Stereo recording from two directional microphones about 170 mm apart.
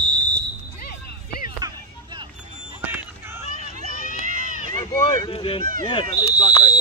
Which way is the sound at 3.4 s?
40° left (ahead or behind).